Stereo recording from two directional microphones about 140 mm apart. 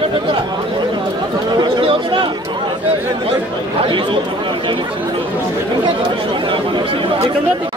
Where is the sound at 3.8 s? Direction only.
35° right (ahead or behind).